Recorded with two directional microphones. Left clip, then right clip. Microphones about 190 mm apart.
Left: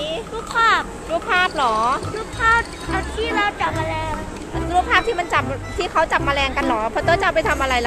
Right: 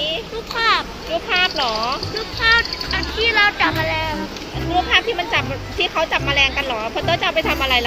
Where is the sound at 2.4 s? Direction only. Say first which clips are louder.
Right 1 dB; 45° left (ahead or behind).